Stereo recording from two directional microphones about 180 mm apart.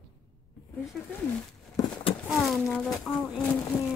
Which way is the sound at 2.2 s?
Centre (ahead or behind).